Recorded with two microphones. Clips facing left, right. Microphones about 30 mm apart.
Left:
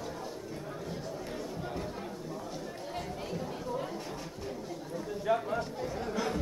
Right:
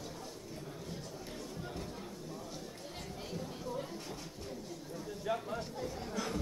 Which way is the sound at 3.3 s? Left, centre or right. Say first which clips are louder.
Left 4 dB; centre.